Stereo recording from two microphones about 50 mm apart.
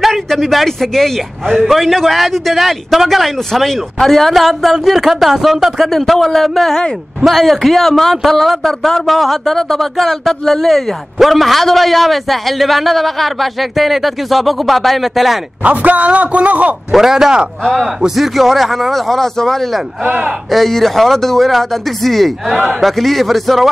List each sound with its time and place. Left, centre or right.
0.0 s a man's voice: centre
5.9 s a man's voice: centre
15.6 s a man's voice: right
16.9 s speech: centre
18.1 s a man's voice: centre